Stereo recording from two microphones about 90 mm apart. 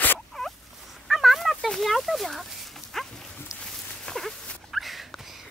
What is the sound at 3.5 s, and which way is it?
Dog, 40° left (ahead or behind).